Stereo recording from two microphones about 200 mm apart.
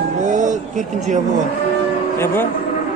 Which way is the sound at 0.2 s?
40° right (ahead or behind).